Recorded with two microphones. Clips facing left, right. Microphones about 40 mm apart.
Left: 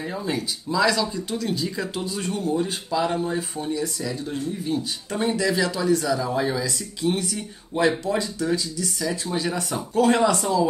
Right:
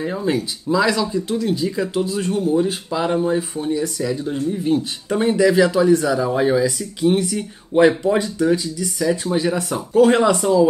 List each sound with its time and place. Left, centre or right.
0.2 s speech: right
0.7 s speech: centre
7.7 s speech: right
8.4 s speech: centre